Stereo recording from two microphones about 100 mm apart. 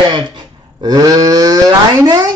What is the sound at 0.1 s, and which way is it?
Livestock, 45° right (ahead or behind).